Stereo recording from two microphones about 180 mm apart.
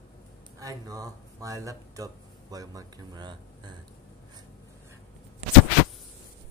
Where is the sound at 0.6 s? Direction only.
20° right (ahead or behind).